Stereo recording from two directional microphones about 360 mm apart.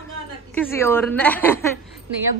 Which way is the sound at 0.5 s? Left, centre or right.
Centre.